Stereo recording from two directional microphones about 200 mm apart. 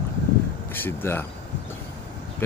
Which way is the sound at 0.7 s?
10° left (ahead or behind).